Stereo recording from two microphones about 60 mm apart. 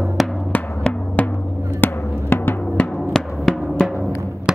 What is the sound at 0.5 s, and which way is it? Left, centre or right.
Music, left.